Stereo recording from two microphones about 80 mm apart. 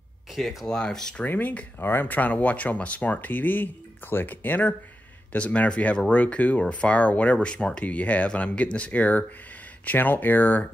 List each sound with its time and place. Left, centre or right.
0.3 s speech: centre
1.2 s speech: left